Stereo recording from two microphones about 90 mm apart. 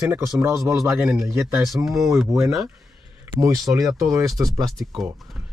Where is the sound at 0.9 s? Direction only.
10° right (ahead or behind).